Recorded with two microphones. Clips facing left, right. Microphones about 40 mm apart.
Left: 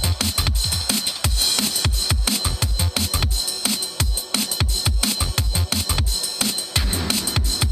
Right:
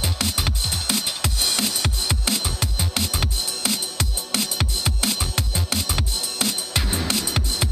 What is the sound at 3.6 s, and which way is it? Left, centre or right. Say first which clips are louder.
Music: even; centre.